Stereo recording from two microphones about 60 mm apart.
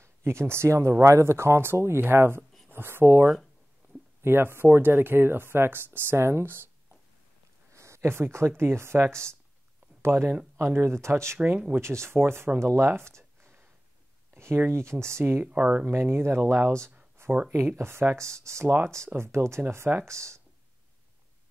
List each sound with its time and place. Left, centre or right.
0.0 s speech: right
6.1 s speech: right
7.7 s speech: right
11.3 s speech: right
11.7 s speech: right
15.4 s speech: right
15.9 s speech: right
17.2 s a sound: right
17.7 s speech: right